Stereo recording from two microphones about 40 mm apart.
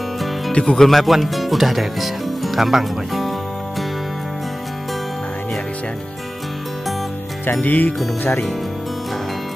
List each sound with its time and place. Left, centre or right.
0.5 s speech: centre
0.8 s speech: centre
7.4 s music: left
8.2 s speech: left